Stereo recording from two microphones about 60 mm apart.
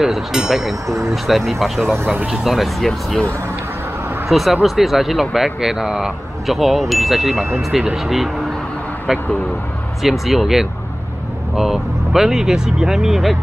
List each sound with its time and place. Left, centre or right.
0.0 s speech: centre
0.8 s speech: right
1.1 s speech: centre
4.3 s speech: centre
7.7 s speech: centre
10.0 s speech: centre